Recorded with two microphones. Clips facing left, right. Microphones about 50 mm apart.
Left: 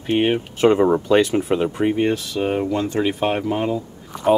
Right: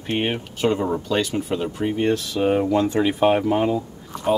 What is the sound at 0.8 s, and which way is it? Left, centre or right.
Speech, left.